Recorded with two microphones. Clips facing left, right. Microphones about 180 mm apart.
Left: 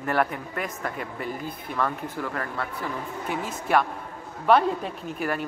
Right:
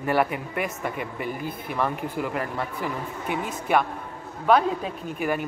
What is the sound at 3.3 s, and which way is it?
Speech, centre (ahead or behind).